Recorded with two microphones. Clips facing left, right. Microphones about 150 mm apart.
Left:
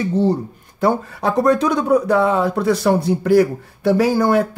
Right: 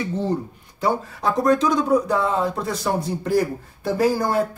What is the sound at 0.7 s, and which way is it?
Speech, 60° left (ahead or behind).